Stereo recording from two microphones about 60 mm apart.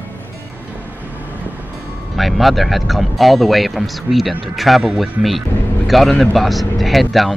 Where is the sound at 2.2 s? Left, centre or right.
Centre.